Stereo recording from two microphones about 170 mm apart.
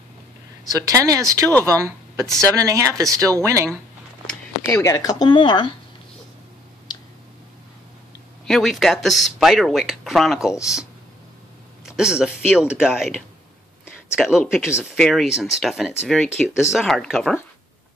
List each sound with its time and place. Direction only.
0.7 s speech: 20° right (ahead or behind)
4.3 s speech: 15° left (ahead or behind)
8.5 s speech: centre (ahead or behind)
11.8 s speech: 5° right (ahead or behind)
14.1 s speech: centre (ahead or behind)